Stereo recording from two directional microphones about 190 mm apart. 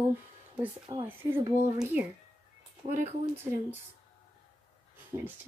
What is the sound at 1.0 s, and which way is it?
Speech, 10° right (ahead or behind).